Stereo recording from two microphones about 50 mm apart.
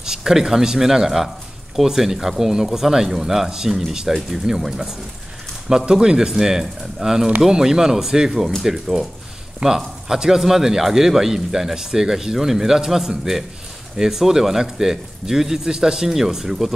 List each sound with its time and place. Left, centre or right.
0.0 s a man's voice: centre